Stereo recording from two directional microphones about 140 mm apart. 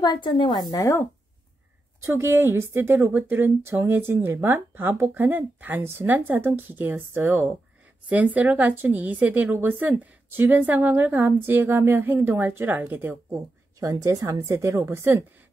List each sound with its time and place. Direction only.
0.0 s a woman's voice: 30° left (ahead or behind)
2.0 s a woman's voice: 20° right (ahead or behind)